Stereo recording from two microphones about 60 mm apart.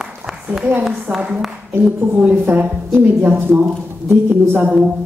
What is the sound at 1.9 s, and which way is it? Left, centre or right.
Speech, right.